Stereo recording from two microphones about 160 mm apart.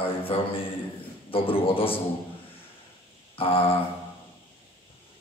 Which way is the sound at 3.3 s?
35° left (ahead or behind).